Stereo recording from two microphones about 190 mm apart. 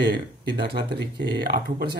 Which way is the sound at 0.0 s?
60° right (ahead or behind).